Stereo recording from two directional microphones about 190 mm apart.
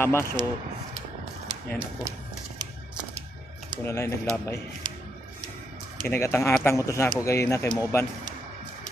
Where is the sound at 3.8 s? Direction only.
15° left (ahead or behind).